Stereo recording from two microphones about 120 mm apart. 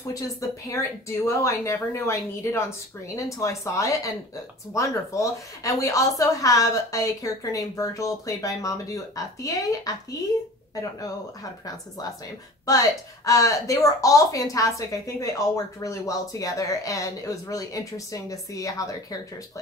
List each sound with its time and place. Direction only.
0.1 s speech: 25° left (ahead or behind)
12.6 s speech: 30° left (ahead or behind)